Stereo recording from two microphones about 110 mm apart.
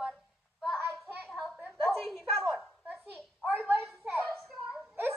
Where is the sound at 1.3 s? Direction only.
Centre (ahead or behind).